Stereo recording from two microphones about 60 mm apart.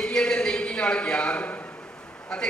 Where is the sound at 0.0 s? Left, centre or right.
Centre.